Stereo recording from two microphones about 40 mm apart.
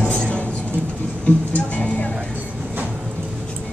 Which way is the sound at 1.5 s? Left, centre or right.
Left.